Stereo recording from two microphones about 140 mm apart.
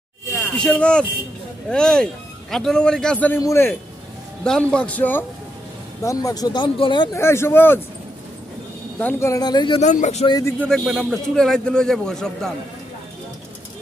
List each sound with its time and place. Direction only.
0.6 s a man's voice: 5° left (ahead or behind)
4.5 s a man's voice: 5° left (ahead or behind)
6.0 s speech: 25° left (ahead or behind)
7.2 s a man's voice: 20° left (ahead or behind)
9.0 s speech: 20° left (ahead or behind)
9.8 s speech: 55° left (ahead or behind)
10.7 s a man's voice: centre (ahead or behind)